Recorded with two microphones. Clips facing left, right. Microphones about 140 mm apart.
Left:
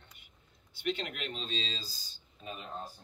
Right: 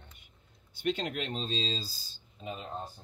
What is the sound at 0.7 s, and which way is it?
Speech, 45° right (ahead or behind).